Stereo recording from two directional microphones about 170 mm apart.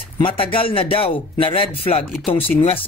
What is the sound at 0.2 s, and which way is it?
Speech, 30° left (ahead or behind).